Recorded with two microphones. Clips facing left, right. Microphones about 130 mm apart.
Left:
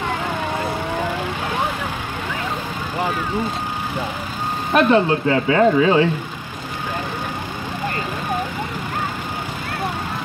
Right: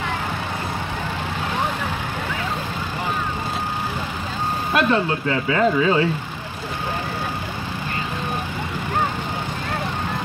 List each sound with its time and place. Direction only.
4.7 s speech: 30° left (ahead or behind)